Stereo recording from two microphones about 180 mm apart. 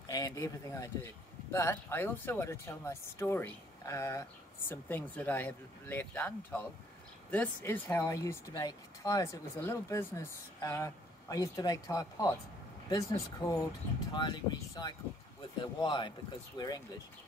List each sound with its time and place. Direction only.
0.0 s speech: 20° left (ahead or behind)